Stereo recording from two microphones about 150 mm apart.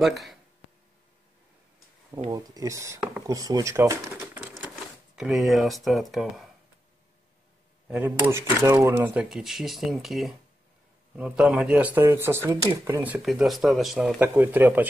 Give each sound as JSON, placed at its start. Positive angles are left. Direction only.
{"t": 0.0, "sound": "speech", "side_deg": 0}
{"t": 2.3, "sound": "speech", "side_deg": -25}
{"t": 5.1, "sound": "speech", "side_deg": -5}
{"t": 7.9, "sound": "speech", "side_deg": -15}
{"t": 13.0, "sound": "speech", "side_deg": -5}